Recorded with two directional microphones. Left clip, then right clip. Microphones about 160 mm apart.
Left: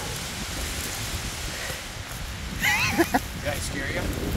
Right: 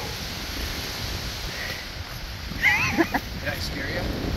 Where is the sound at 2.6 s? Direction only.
25° left (ahead or behind).